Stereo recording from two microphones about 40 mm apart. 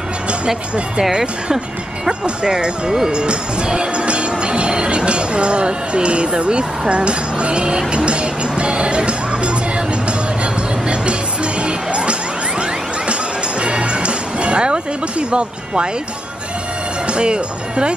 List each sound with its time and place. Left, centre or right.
1.1 s speech: centre
7.9 s music: right
17.0 s speech: right